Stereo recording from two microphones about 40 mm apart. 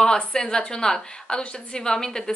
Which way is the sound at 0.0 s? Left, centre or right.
Centre.